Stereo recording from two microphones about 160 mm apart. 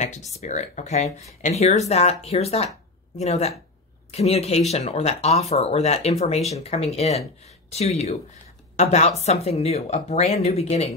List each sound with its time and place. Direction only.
0.4 s a woman's voice: 45° left (ahead or behind)